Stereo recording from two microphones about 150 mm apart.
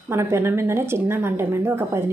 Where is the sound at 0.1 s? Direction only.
15° right (ahead or behind).